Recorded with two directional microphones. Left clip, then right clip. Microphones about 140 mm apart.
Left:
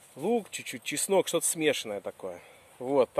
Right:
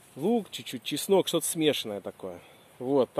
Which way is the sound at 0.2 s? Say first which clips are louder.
Right 1 dB; 10° left (ahead or behind).